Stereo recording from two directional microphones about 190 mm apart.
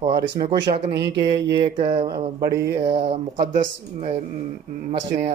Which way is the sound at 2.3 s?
60° right (ahead or behind).